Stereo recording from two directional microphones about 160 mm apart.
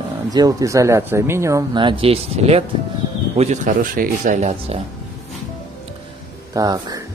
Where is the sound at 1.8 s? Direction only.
30° right (ahead or behind).